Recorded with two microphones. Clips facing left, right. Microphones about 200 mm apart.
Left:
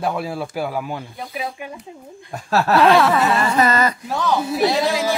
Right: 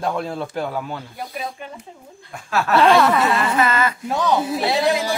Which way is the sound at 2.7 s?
Centre (ahead or behind).